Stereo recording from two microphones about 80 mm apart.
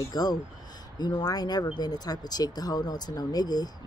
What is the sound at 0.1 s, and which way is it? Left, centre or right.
Speech, left.